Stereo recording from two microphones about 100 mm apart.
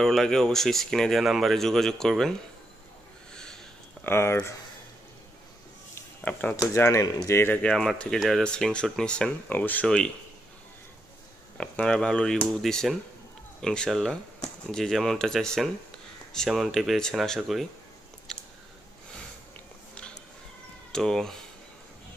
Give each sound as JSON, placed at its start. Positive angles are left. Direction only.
{"t": 0.0, "sound": "speech", "side_deg": 5}
{"t": 4.0, "sound": "speech", "side_deg": 25}
{"t": 6.7, "sound": "speech", "side_deg": 30}
{"t": 7.2, "sound": "speech", "side_deg": 20}
{"t": 7.6, "sound": "speech", "side_deg": 10}
{"t": 11.5, "sound": "speech", "side_deg": 10}
{"t": 20.9, "sound": "speech", "side_deg": 5}